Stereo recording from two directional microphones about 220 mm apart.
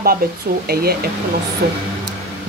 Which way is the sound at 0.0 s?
45° right (ahead or behind).